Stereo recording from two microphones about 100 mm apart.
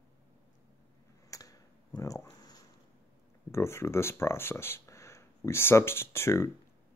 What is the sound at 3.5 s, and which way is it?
Speech, 25° left (ahead or behind).